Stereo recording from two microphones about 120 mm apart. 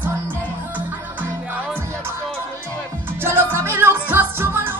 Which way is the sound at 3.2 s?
20° right (ahead or behind).